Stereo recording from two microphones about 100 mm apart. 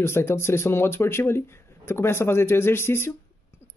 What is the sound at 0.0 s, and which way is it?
Speech, 25° left (ahead or behind).